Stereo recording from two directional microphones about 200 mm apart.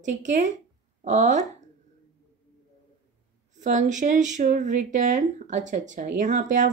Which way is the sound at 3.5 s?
35° right (ahead or behind).